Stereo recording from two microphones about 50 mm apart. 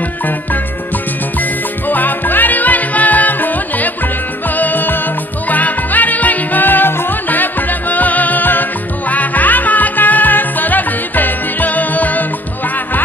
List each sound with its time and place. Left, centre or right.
1.4 s music: left